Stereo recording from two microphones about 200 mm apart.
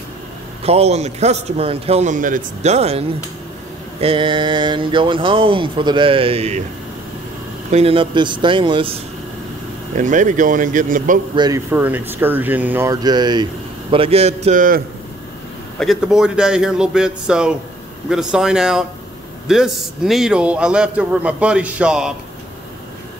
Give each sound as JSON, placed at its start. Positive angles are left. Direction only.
{"t": 0.7, "sound": "a man's voice", "side_deg": -30}
{"t": 7.7, "sound": "speech", "side_deg": -30}
{"t": 9.9, "sound": "a man's voice", "side_deg": -40}
{"t": 11.3, "sound": "speech", "side_deg": -20}
{"t": 15.8, "sound": "a man's voice", "side_deg": 0}